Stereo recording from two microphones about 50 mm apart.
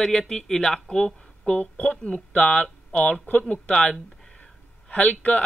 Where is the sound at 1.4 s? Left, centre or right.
Left.